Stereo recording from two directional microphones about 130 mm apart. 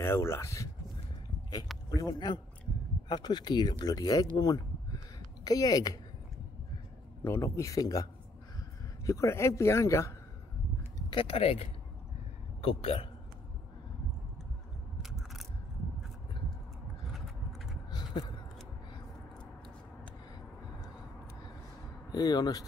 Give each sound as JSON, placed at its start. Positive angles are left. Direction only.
{"t": 0.0, "sound": "a man's voice", "side_deg": 20}
{"t": 1.9, "sound": "a man's voice", "side_deg": 30}
{"t": 7.2, "sound": "a man's voice", "side_deg": 20}
{"t": 11.1, "sound": "speech", "side_deg": 45}
{"t": 15.0, "sound": "scissors", "side_deg": 0}
{"t": 17.1, "sound": "vehicle", "side_deg": 0}
{"t": 22.1, "sound": "a man's voice", "side_deg": 30}